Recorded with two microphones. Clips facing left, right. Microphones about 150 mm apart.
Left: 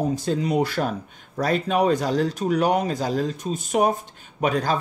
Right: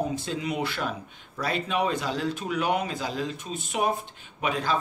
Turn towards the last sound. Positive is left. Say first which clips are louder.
# left 5 dB
turn(degrees=40)  # may be behind; listen again after turning